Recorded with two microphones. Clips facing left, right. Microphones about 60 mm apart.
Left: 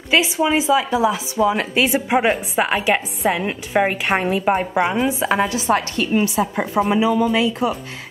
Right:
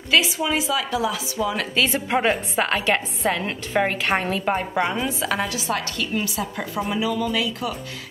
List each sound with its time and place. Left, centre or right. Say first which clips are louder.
0.1 s a woman's voice: left 4 dB; left